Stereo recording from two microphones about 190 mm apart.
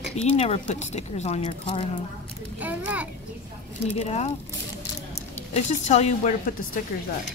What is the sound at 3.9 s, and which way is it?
Speech, 35° left (ahead or behind).